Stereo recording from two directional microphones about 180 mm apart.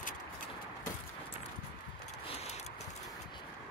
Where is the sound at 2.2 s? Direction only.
35° left (ahead or behind).